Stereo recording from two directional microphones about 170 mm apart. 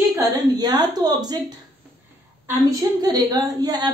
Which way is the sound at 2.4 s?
20° right (ahead or behind).